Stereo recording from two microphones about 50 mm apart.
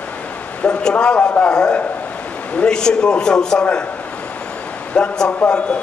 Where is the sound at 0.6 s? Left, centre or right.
Left.